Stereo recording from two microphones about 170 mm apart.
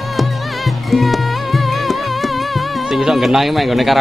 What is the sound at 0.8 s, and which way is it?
Music, centre (ahead or behind).